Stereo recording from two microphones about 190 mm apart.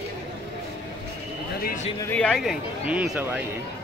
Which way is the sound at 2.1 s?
5° left (ahead or behind).